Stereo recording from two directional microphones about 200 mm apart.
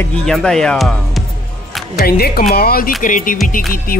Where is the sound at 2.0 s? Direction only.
50° left (ahead or behind).